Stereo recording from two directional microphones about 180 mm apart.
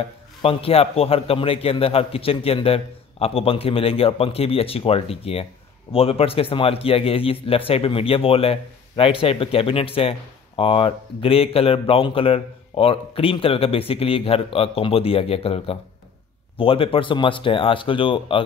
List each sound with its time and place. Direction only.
0.4 s a man's voice: 30° left (ahead or behind)